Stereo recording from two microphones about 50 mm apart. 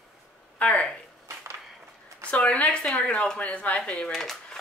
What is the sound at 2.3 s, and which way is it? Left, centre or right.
Speech, left.